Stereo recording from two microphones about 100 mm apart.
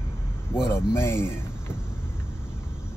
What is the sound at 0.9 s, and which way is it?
Speech, 25° left (ahead or behind).